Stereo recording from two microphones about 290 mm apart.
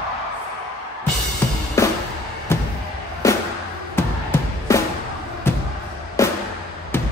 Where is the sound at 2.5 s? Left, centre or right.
Centre.